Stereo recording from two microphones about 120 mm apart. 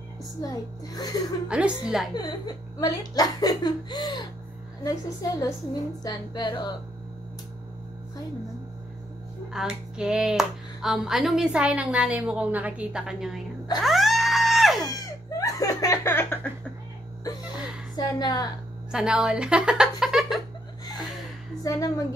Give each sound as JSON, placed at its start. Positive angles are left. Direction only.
{"t": 0.4, "sound": "speech", "side_deg": 35}
{"t": 1.5, "sound": "speech", "side_deg": -10}
{"t": 2.1, "sound": "a woman's voice", "side_deg": 35}
{"t": 9.5, "sound": "speech", "side_deg": -5}
{"t": 13.7, "sound": "a sound", "side_deg": 0}
{"t": 14.9, "sound": "music", "side_deg": 30}
{"t": 17.9, "sound": "speech", "side_deg": 35}
{"t": 18.9, "sound": "speech", "side_deg": -5}
{"t": 21.6, "sound": "a woman's voice", "side_deg": 30}